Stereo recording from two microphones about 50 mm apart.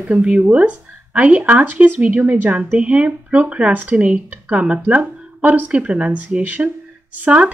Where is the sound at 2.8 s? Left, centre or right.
Right.